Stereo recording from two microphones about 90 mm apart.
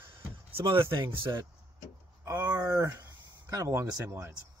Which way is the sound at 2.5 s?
35° right (ahead or behind).